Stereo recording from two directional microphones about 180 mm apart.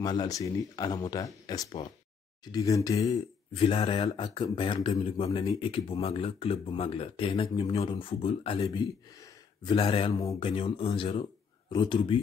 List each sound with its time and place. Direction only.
0.0 s speech: 20° left (ahead or behind)
3.2 s speech: 30° left (ahead or behind)
9.7 s speech: 30° left (ahead or behind)
10.1 s speech: 15° left (ahead or behind)
10.4 s speech: 30° left (ahead or behind)